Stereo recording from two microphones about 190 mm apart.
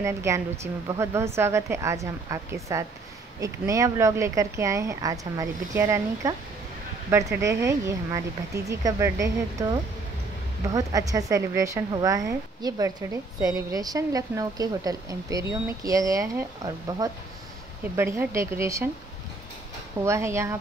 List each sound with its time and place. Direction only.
0.0 s a woman's voice: 15° right (ahead or behind)
20.1 s a woman's voice: 15° right (ahead or behind)